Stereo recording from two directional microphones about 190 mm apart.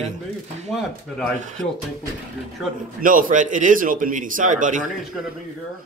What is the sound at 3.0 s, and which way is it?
A man's voice, 45° right (ahead or behind).